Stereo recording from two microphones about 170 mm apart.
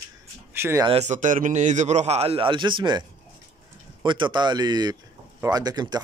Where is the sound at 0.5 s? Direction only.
15° right (ahead or behind).